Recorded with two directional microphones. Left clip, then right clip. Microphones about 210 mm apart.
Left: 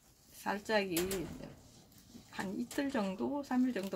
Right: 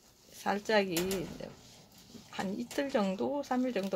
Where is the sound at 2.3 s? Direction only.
35° right (ahead or behind).